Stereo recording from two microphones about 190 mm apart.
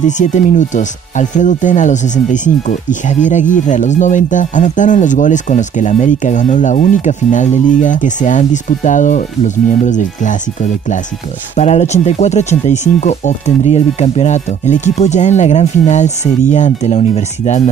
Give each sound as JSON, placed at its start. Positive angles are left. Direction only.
{"t": 0.2, "sound": "speech", "side_deg": 40}
{"t": 11.5, "sound": "speech", "side_deg": 35}